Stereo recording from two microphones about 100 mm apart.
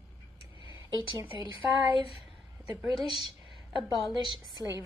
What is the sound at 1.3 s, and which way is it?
Speech, 60° left (ahead or behind).